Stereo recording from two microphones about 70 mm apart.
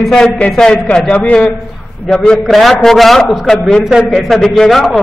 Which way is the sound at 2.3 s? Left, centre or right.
Centre.